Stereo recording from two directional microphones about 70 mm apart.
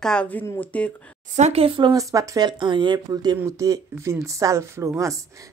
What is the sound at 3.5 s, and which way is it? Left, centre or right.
Speech, right.